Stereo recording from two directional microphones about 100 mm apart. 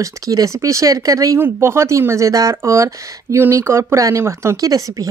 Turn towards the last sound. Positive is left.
turn(degrees=-35)  # may be behind; listen again after turning